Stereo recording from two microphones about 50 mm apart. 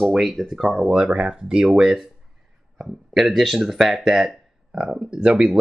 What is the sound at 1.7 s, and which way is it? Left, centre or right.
Speech, centre.